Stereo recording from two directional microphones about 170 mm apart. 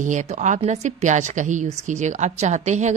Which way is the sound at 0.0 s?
45° right (ahead or behind).